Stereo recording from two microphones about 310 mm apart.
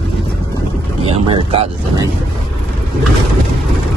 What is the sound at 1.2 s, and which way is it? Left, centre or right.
Speech, centre.